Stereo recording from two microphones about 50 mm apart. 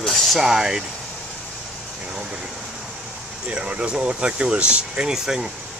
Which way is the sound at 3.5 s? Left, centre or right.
Right.